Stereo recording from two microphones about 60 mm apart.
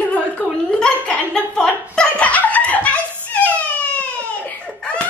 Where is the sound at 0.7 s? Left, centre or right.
Centre.